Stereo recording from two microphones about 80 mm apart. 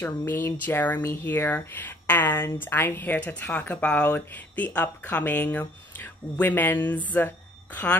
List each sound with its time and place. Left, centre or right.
0.0 s speech: left